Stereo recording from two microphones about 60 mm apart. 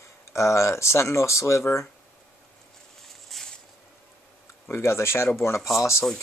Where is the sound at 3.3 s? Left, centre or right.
Centre.